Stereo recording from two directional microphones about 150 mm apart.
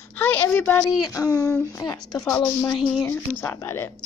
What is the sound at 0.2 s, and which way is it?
Speech, 10° left (ahead or behind).